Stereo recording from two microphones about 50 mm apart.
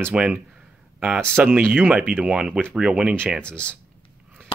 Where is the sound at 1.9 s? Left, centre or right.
Right.